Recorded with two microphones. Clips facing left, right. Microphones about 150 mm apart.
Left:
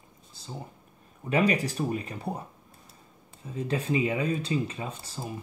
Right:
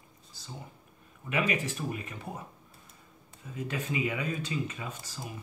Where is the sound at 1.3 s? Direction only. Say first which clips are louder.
Left 5 dB; 35° left (ahead or behind).